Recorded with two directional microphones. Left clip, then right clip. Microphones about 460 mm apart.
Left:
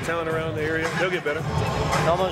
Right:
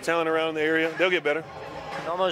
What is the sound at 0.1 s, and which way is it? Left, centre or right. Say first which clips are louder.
Speech: right 3 dB; right.